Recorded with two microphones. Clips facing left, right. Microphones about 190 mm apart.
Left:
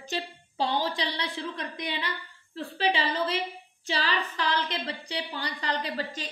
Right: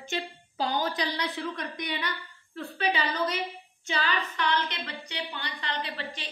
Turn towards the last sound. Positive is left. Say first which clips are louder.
# left 3 dB
turn(degrees=40)  # may be behind; listen again after turning